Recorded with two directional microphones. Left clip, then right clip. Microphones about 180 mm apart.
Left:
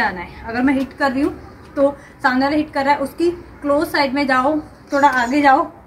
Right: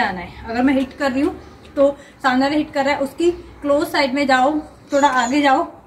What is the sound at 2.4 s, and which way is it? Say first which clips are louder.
A woman's voice: left 1 dB; centre (ahead or behind).